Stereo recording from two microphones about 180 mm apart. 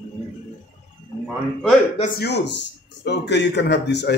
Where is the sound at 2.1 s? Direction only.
70° left (ahead or behind).